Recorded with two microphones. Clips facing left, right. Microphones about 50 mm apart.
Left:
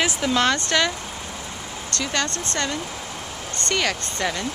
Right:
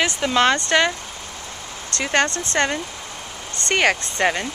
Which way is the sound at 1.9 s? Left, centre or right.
Right.